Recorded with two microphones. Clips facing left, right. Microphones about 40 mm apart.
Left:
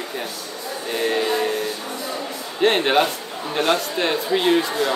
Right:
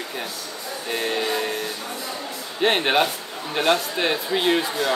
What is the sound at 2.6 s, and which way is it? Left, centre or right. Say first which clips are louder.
A woman's voice: left 2 dB; centre.